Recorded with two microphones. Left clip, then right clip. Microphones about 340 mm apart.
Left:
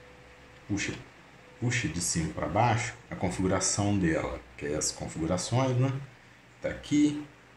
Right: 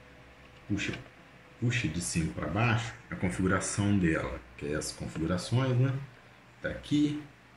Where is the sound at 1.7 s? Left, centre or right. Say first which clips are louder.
Left 2 dB; centre.